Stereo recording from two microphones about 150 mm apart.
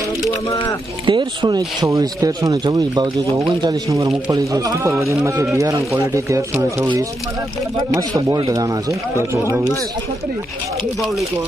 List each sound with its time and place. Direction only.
0.2 s speech: 25° left (ahead or behind)
1.0 s speech: 30° right (ahead or behind)
1.8 s speech: 20° right (ahead or behind)
7.9 s speech: 20° right (ahead or behind)